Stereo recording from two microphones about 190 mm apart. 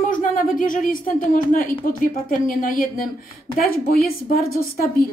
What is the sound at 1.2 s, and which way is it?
Speech, 45° left (ahead or behind).